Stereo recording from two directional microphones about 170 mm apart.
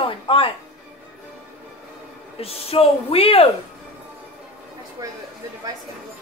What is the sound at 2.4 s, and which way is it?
Speech, 35° left (ahead or behind).